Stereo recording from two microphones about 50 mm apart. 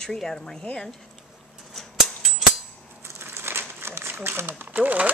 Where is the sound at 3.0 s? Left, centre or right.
Right.